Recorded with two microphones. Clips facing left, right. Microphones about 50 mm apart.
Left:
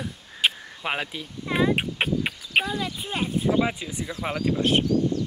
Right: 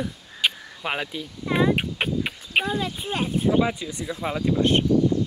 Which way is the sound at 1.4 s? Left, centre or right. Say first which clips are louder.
Right 1 dB; centre.